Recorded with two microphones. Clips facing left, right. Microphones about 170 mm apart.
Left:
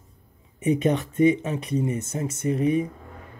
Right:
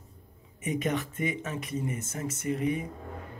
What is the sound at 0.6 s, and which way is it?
Speech, 25° left (ahead or behind).